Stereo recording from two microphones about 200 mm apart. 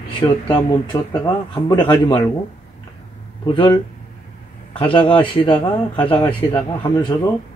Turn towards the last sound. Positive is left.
turn(degrees=25)  # may be behind; listen again after turning